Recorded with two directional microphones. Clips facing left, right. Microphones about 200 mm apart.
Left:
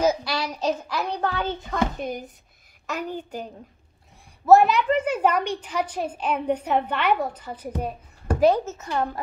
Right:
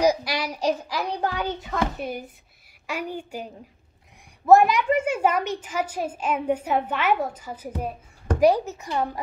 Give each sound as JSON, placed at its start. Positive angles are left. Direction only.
{"t": 0.0, "sound": "child singing", "side_deg": -15}
{"t": 1.0, "sound": "a child's voice", "side_deg": -10}
{"t": 4.5, "sound": "a child's voice", "side_deg": -10}